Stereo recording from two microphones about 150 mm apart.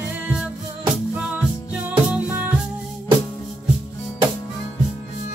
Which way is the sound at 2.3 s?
10° right (ahead or behind).